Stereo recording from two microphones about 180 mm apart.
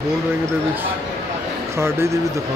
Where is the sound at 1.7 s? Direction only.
15° right (ahead or behind).